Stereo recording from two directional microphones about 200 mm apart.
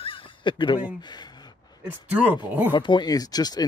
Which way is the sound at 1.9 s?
5° right (ahead or behind).